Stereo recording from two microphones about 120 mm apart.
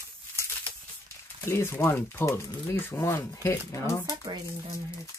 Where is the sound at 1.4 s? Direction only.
20° left (ahead or behind).